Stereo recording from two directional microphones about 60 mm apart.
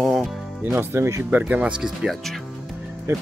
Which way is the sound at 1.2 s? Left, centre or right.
Right.